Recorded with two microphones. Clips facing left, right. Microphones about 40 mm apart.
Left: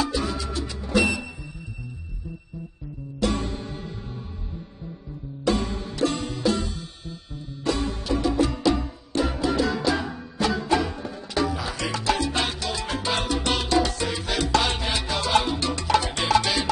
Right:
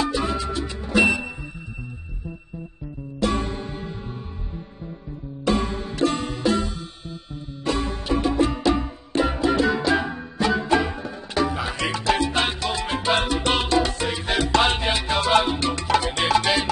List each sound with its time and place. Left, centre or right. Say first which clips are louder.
0.0 s music: right 3 dB; right
3.2 s music: right 2 dB; right
5.4 s music: right 2 dB; right
13.7 s music: right 1 dB; right
13.9 s music: right 3 dB; right